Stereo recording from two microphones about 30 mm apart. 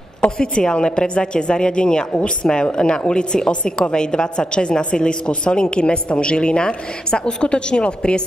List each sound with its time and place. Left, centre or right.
0.4 s a woman's voice: left
5.3 s a woman's voice: left